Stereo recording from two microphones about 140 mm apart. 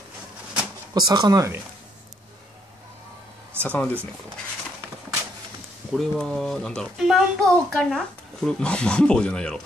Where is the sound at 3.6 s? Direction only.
10° left (ahead or behind).